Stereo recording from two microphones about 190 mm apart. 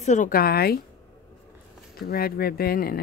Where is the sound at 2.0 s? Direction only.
50° left (ahead or behind).